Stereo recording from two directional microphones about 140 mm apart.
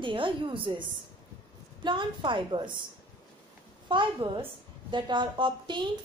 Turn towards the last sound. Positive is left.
turn(degrees=-35)  # may be behind; listen again after turning